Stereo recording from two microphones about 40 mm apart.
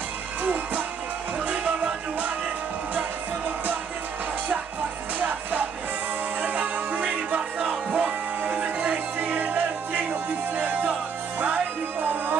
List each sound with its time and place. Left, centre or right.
0.4 s music: right
2.9 s music: right
6.4 s music: right